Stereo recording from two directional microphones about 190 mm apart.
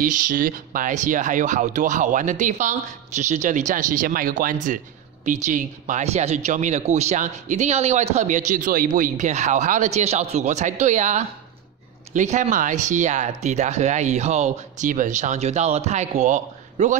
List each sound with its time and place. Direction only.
0.0 s speech: 45° right (ahead or behind)